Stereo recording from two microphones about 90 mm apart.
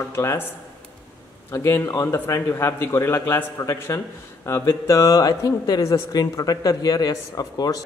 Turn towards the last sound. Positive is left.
turn(degrees=45)  # may be behind; listen again after turning